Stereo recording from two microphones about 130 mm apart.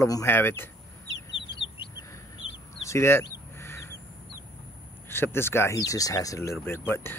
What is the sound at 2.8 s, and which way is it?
Bird, 20° left (ahead or behind).